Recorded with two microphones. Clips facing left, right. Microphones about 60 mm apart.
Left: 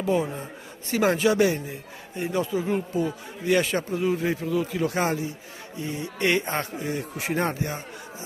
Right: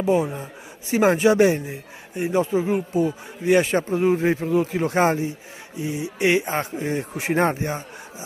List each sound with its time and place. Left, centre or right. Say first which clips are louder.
0.0 s speech: right 4 dB; centre
5.8 s speech: right 4 dB; centre
6.8 s speech: right 4 dB; right